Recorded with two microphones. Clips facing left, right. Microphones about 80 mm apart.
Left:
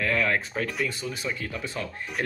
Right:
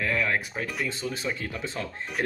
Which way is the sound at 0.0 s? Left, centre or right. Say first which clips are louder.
Left 1 dB; right.